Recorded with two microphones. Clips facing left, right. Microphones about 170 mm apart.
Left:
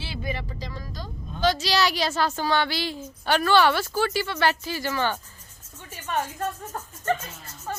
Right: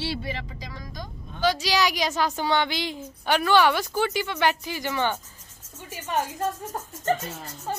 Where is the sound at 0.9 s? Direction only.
10° right (ahead or behind).